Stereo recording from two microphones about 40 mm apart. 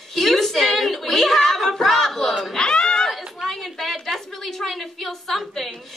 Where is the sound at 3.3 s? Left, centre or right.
Centre.